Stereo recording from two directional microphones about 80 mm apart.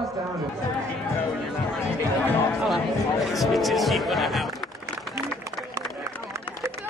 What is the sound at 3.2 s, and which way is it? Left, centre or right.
Music, centre.